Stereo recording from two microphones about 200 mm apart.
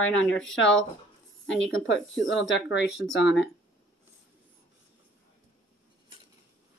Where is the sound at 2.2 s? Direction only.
65° left (ahead or behind).